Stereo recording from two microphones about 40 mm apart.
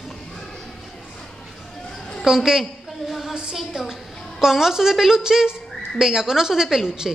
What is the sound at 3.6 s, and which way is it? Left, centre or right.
Speech, centre.